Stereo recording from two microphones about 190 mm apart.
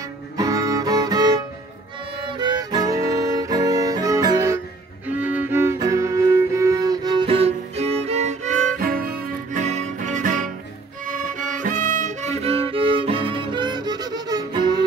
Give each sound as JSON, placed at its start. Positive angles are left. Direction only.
{"t": 0.4, "sound": "music", "side_deg": -15}